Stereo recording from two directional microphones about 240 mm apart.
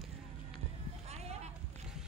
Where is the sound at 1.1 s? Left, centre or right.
Right.